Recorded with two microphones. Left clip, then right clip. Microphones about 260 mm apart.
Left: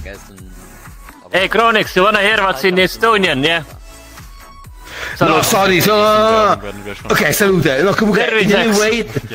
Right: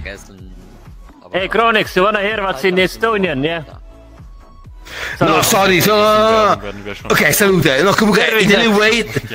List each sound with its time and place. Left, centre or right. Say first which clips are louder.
1.5 s speech: right 1 dB; centre
2.1 s a man's voice: left 5 dB; left
2.4 s a man's voice: left 2 dB; centre
3.1 s a man's voice: left 4 dB; left
4.8 s music: right 1 dB; centre
5.3 s a man's voice: right 1 dB; centre